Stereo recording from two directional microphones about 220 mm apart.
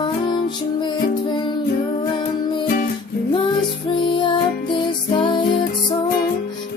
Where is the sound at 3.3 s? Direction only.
20° left (ahead or behind).